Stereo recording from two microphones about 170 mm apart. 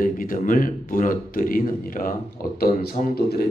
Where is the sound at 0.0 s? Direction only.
55° left (ahead or behind).